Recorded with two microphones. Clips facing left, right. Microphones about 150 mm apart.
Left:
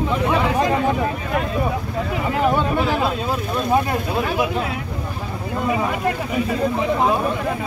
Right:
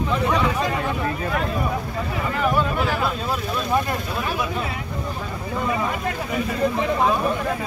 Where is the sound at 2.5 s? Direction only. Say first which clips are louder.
Left 3 dB; 20° left (ahead or behind).